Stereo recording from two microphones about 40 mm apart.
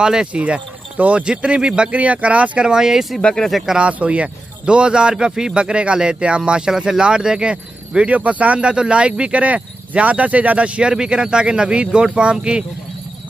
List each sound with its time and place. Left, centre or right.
0.0 s speech: right
0.3 s speech: right
1.9 s speech: right
2.6 s speech: centre
3.2 s speech: left
3.7 s speech: right
5.1 s speech: centre
8.1 s speech: right
8.6 s speech: right
10.9 s speech: right